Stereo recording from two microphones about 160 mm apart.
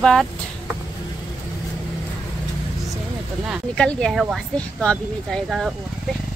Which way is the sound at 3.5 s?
5° left (ahead or behind).